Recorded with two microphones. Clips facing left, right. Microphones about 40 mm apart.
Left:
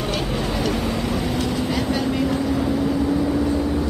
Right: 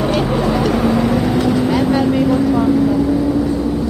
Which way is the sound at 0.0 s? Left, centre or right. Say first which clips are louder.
Right 8 dB; centre.